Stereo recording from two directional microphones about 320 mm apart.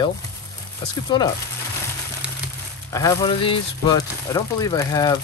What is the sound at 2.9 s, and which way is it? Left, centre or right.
Speech, centre.